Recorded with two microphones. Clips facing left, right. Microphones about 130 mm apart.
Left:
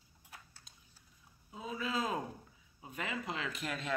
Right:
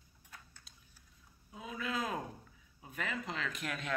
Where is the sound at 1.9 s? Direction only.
25° left (ahead or behind).